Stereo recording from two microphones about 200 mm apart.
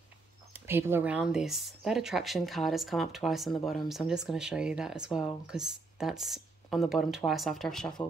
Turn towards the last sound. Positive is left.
turn(degrees=0)  # may be behind; listen again after turning